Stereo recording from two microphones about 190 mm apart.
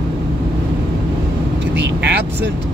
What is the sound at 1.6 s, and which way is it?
Vehicle, 70° right (ahead or behind).